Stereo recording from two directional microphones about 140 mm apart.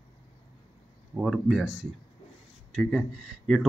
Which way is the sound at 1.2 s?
5° right (ahead or behind).